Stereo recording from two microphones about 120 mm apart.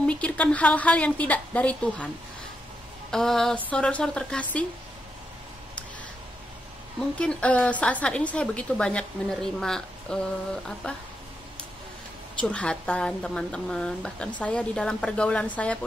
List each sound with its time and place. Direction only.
0.0 s a woman's voice: 10° left (ahead or behind)
3.1 s a woman's voice: 5° left (ahead or behind)
7.0 s a woman's voice: 10° left (ahead or behind)
12.4 s a woman's voice: 10° left (ahead or behind)